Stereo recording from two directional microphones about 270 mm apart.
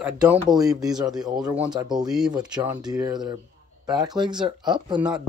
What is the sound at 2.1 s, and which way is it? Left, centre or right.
Speech, centre.